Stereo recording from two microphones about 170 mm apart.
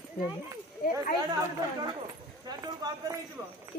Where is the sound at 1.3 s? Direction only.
25° right (ahead or behind).